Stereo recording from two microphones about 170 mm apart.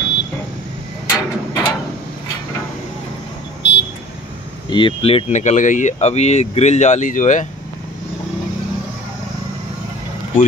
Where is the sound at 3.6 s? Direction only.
90° left.